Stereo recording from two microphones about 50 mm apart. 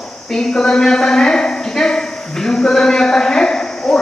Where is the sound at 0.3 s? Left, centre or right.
Centre.